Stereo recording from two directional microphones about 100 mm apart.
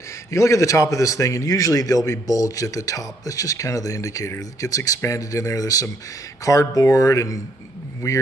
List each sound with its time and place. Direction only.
0.3 s a man's voice: 30° left (ahead or behind)